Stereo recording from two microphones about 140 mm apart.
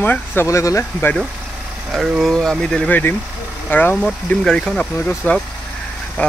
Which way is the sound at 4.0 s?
5° left (ahead or behind).